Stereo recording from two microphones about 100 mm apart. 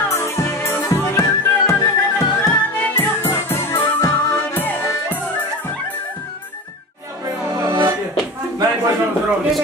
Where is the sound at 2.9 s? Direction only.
25° left (ahead or behind).